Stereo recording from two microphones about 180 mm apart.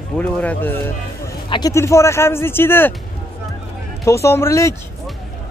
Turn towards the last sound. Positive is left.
turn(degrees=15)  # may be behind; listen again after turning